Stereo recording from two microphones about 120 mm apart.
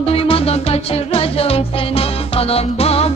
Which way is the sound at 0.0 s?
50° left (ahead or behind).